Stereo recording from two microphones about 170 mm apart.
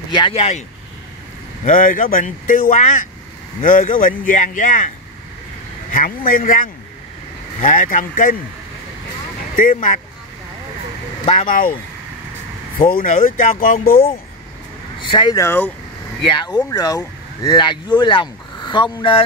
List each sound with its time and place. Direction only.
0.1 s speech: 30° left (ahead or behind)
1.6 s speech: 50° left (ahead or behind)
9.6 s speech: 50° left (ahead or behind)
11.2 s speech: 50° left (ahead or behind)
15.0 s speech: 30° left (ahead or behind)
16.3 s speech: 25° left (ahead or behind)